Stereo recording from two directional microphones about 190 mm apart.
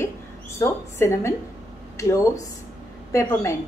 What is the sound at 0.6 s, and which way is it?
Speech, 15° left (ahead or behind).